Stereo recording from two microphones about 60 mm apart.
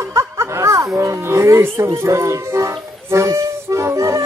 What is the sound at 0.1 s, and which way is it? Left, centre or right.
Music, right.